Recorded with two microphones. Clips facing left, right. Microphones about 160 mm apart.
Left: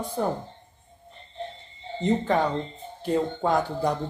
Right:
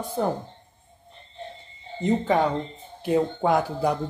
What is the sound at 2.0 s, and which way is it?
Speech, 5° right (ahead or behind).